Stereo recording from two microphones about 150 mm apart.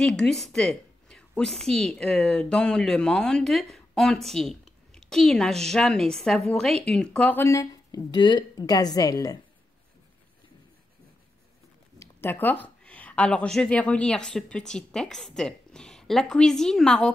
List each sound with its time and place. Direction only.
0.0 s a woman's voice: 5° left (ahead or behind); by 9.4 s 25° left (ahead or behind)
12.0 s speech: 15° left (ahead or behind)